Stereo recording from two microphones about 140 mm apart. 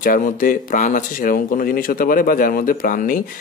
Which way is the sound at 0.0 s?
75° left (ahead or behind).